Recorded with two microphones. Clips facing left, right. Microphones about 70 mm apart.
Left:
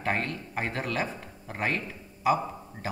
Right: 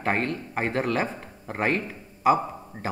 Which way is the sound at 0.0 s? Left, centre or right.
Right.